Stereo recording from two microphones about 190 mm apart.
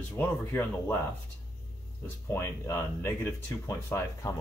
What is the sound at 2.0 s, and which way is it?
Speech, 15° left (ahead or behind).